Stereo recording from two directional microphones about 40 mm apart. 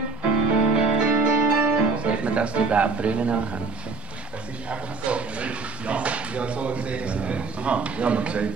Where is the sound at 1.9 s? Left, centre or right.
Right.